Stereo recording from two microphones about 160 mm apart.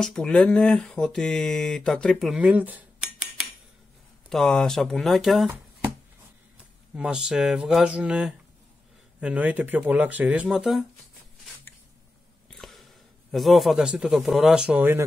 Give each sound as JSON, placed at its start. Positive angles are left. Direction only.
{"t": 0.0, "sound": "speech", "side_deg": 5}
{"t": 4.3, "sound": "speech", "side_deg": 5}
{"t": 7.0, "sound": "speech", "side_deg": -5}
{"t": 12.4, "sound": "a sound", "side_deg": 0}
{"t": 13.3, "sound": "speech", "side_deg": 0}